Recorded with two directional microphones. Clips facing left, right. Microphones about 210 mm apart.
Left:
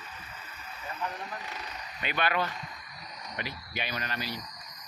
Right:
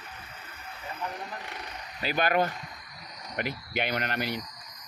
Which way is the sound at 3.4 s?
55° right (ahead or behind).